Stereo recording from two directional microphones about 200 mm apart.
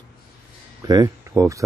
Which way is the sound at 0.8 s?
15° right (ahead or behind).